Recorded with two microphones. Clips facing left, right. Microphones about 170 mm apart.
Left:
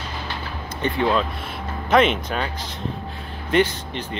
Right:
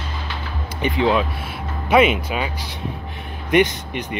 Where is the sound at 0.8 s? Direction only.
15° right (ahead or behind).